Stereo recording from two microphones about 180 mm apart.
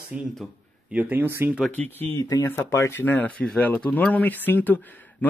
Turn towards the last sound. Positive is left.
turn(degrees=10)  # may be behind; listen again after turning